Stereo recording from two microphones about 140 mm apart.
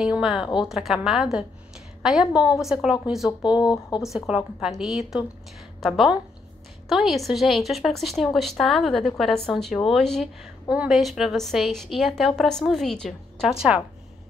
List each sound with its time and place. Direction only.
0.0 s a woman's voice: 5° right (ahead or behind)
3.3 s speech: 30° left (ahead or behind)
4.0 s a woman's voice: 5° right (ahead or behind)